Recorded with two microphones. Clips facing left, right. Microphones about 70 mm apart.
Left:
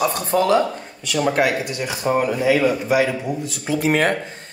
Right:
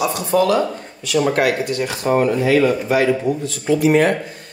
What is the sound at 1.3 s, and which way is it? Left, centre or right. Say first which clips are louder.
Speech: right 2 dB; centre.